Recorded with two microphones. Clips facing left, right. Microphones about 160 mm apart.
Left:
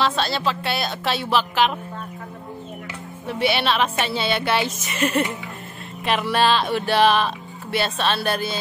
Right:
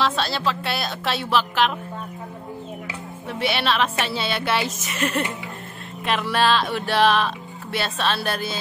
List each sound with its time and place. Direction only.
0.0 s a woman's voice: centre (ahead or behind)
3.3 s a woman's voice: centre (ahead or behind)